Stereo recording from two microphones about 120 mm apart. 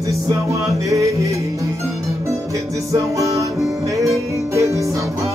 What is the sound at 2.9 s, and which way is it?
Music, 25° right (ahead or behind).